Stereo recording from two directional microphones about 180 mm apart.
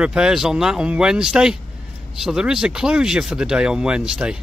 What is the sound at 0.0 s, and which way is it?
Speech, 5° right (ahead or behind).